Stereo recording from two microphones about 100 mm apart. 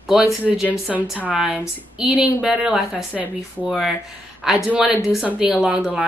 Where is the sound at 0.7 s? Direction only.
15° right (ahead or behind).